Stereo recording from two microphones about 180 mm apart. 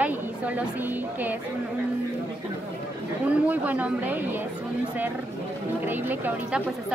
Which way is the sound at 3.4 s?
10° right (ahead or behind).